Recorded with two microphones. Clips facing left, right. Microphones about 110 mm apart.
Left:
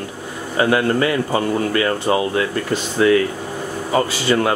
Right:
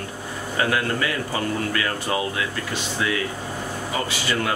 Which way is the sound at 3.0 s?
45° left (ahead or behind).